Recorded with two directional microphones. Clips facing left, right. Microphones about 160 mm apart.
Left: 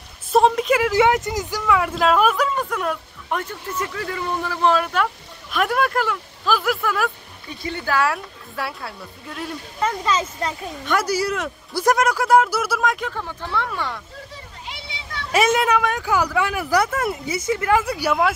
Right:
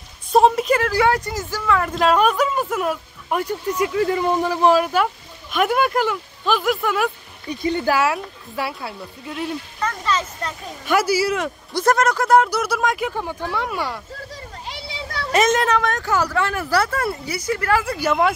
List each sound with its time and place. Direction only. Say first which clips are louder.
0.3 s a sound: right 1 dB; centre (ahead or behind)
0.7 s speech: left 1 dB; 15° left (ahead or behind); by 7.1 s centre (ahead or behind)
7.4 s speech: right 7 dB; 20° right (ahead or behind)
8.0 s speech: right 1 dB; centre (ahead or behind)
10.9 s speech: right 3 dB; 5° right (ahead or behind)
11.8 s speech: right 1 dB; 10° left (ahead or behind)
13.0 s speech: right 4 dB; 15° right (ahead or behind)
14.3 s a sound: right 3 dB; 40° right (ahead or behind)
15.3 s speech: even; 10° left (ahead or behind)